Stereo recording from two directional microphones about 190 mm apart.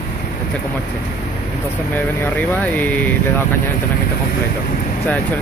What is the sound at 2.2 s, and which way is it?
Speech, 10° left (ahead or behind).